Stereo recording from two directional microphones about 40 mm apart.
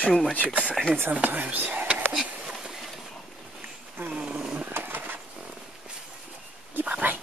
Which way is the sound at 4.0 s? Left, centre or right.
Right.